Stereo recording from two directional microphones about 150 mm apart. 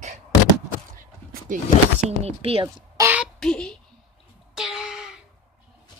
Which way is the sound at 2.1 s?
40° right (ahead or behind).